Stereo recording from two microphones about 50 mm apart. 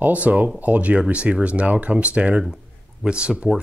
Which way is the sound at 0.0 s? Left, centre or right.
Right.